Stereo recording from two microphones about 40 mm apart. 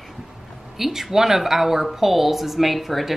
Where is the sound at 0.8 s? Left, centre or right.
Centre.